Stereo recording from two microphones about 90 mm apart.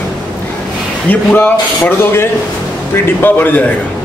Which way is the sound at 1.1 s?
20° left (ahead or behind).